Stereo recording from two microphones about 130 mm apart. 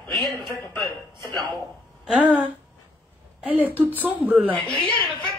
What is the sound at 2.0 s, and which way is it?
Speech, 10° right (ahead or behind).